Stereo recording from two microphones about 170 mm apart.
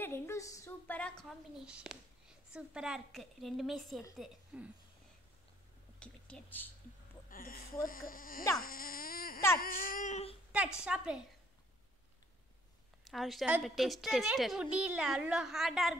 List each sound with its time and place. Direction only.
0.0 s a sound: 15° left (ahead or behind)
1.7 s a woman's voice: 5° right (ahead or behind)
5.9 s speech: 5° left (ahead or behind)
7.2 s speech: 55° left (ahead or behind)
10.8 s a woman's voice: 5° right (ahead or behind)
13.0 s a woman's voice: centre (ahead or behind)